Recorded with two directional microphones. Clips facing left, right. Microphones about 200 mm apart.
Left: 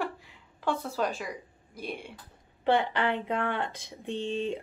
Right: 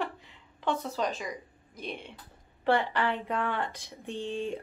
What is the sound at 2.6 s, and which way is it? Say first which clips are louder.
Speech: left 1 dB; 20° left (ahead or behind).